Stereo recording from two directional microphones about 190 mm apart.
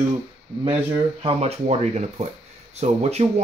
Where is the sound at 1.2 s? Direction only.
35° right (ahead or behind).